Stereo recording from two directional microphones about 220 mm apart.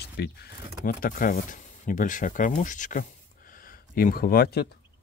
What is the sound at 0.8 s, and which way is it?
Speech, 40° left (ahead or behind).